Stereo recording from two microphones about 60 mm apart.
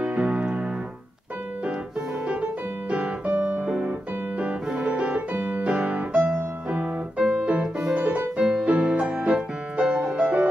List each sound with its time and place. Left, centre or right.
0.0 s keyboard: right
3.3 s piano: right
7.2 s music: centre